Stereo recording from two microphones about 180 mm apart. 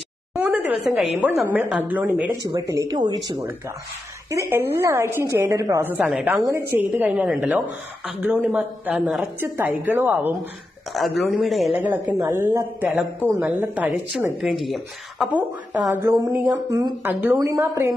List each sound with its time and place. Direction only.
0.3 s a woman's voice: 10° right (ahead or behind)
2.4 s speech: 30° right (ahead or behind)
4.3 s speech: 15° right (ahead or behind)
10.9 s speech: centre (ahead or behind)
11.8 s speech: 10° right (ahead or behind)